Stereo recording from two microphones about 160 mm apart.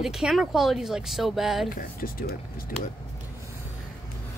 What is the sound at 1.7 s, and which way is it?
Speech, 65° left (ahead or behind).